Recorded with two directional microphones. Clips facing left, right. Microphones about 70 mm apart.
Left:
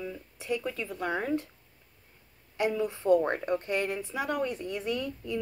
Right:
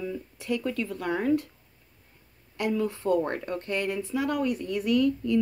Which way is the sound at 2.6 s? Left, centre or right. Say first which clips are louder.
Right 1 dB; centre.